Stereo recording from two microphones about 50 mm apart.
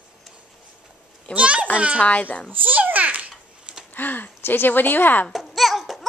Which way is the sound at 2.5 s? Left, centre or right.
Right.